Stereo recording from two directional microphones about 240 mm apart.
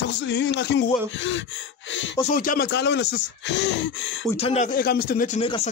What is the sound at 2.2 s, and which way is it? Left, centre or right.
Speech, left.